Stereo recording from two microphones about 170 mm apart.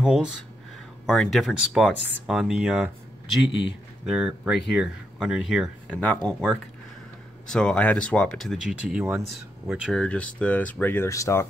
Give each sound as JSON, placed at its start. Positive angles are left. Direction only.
{"t": 0.0, "sound": "speech", "side_deg": -5}
{"t": 3.4, "sound": "a man's voice", "side_deg": 90}
{"t": 4.0, "sound": "speech", "side_deg": 0}